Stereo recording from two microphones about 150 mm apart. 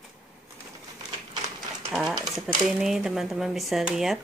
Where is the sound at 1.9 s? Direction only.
Centre (ahead or behind).